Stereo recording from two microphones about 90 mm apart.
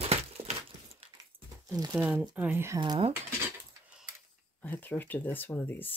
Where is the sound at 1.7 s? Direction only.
45° right (ahead or behind).